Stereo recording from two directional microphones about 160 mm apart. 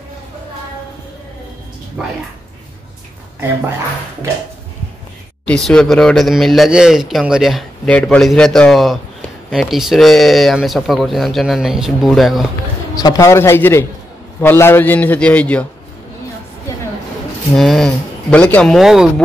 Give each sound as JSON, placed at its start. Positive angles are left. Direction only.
{"t": 2.0, "sound": "speech", "side_deg": -5}
{"t": 5.4, "sound": "speech", "side_deg": 5}
{"t": 12.9, "sound": "a man's voice", "side_deg": 20}
{"t": 17.6, "sound": "speech", "side_deg": 0}